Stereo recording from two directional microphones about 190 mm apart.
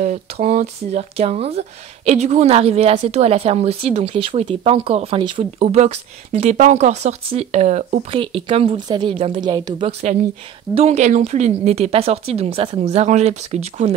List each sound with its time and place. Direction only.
0.0 s speech: 40° right (ahead or behind); by 9.8 s 20° right (ahead or behind)
10.7 s speech: 35° right (ahead or behind)